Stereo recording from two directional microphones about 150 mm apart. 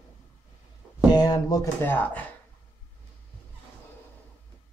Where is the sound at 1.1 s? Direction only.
25° left (ahead or behind); by 2.3 s 10° left (ahead or behind).